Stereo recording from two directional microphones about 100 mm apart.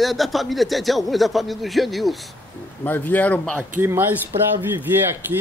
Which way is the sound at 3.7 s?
20° right (ahead or behind).